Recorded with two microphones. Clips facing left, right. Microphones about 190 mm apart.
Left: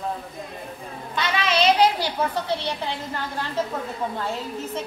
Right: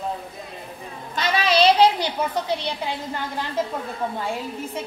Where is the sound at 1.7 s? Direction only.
20° right (ahead or behind).